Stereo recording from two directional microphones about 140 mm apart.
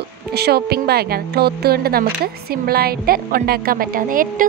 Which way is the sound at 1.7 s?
90° right.